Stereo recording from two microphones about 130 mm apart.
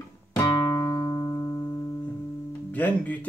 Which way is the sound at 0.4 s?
20° left (ahead or behind).